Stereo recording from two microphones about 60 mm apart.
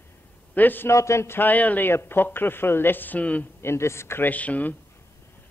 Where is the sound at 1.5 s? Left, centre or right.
Left.